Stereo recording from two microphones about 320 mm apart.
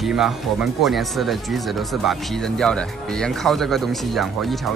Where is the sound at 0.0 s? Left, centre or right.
Centre.